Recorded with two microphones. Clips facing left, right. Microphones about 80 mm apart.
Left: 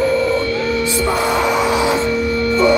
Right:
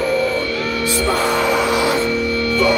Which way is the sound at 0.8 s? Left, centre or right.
Left.